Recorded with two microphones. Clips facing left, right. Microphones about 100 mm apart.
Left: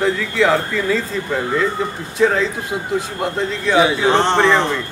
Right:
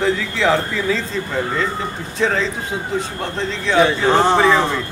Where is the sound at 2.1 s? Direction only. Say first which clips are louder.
Left 3 dB; 5° left (ahead or behind).